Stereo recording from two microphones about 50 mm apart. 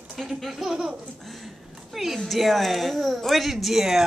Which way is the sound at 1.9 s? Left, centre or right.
Centre.